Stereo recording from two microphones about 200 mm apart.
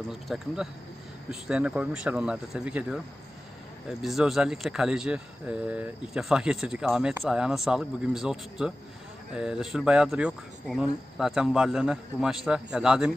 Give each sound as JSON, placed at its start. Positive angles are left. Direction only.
{"t": 0.1, "sound": "speech", "side_deg": 0}
{"t": 4.0, "sound": "speech", "side_deg": 0}